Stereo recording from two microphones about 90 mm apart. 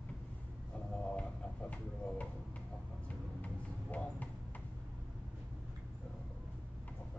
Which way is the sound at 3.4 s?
15° left (ahead or behind).